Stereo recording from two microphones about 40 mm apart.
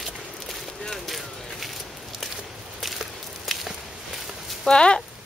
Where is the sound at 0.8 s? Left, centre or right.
Centre.